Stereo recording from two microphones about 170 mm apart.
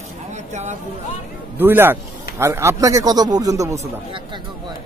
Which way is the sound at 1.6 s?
10° right (ahead or behind).